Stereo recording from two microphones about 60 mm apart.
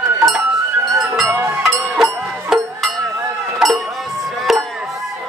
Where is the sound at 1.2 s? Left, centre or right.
Right.